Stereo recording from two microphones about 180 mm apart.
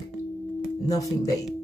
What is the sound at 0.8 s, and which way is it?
Speech, 20° left (ahead or behind).